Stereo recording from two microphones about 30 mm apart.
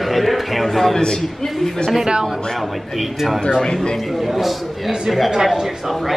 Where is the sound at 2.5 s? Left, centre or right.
Centre.